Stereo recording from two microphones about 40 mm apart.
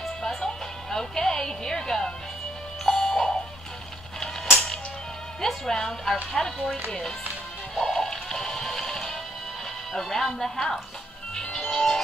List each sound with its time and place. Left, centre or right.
0.0 s music: centre
5.7 s speech: centre
7.7 s music: centre
9.9 s speech: centre
11.5 s music: centre